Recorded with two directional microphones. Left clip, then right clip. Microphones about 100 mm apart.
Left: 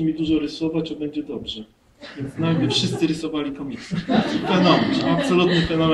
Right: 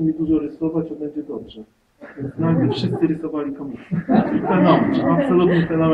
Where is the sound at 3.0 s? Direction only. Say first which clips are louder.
Right 2 dB; 15° left (ahead or behind).